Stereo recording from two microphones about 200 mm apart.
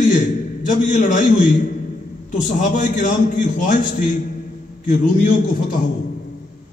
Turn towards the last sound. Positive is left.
turn(degrees=40)  # may be behind; listen again after turning